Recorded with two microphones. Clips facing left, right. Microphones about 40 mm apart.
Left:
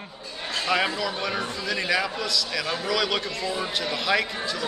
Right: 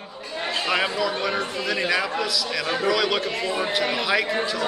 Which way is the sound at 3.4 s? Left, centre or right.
Right.